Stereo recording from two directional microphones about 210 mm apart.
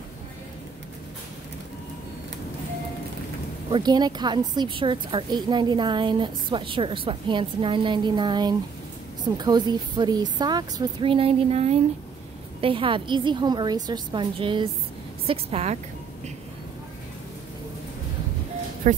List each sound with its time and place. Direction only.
3.7 s a woman's voice: 20° right (ahead or behind)
18.8 s speech: 35° right (ahead or behind)